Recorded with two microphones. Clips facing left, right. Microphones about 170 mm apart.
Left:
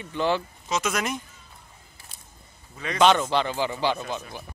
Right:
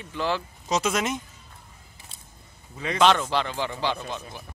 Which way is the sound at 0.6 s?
35° right (ahead or behind).